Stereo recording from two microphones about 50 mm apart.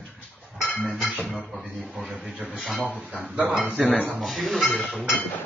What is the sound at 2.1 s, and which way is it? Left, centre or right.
Speech, centre.